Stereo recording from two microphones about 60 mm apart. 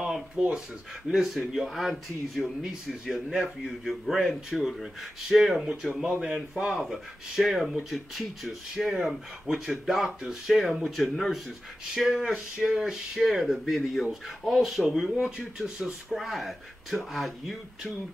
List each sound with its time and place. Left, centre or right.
0.4 s speech: centre
1.0 s speech: centre
6.8 s speech: centre